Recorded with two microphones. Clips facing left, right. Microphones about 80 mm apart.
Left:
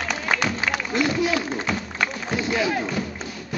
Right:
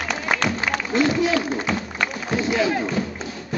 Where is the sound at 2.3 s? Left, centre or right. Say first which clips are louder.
Right 4 dB; centre.